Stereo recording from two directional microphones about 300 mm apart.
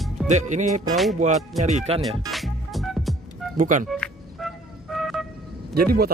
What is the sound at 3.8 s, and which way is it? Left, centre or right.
Music, centre.